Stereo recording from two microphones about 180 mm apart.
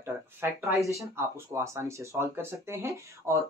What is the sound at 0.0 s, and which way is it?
Speech, 15° right (ahead or behind).